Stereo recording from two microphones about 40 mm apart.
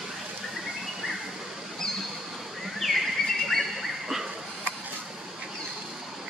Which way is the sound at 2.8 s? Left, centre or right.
Centre.